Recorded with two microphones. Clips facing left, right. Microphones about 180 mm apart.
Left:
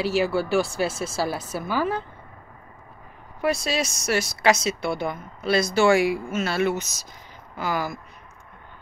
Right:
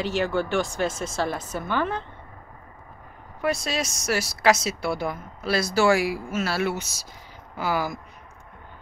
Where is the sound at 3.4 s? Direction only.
5° left (ahead or behind).